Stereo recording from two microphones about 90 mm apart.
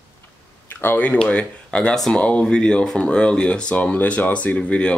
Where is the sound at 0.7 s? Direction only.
20° left (ahead or behind).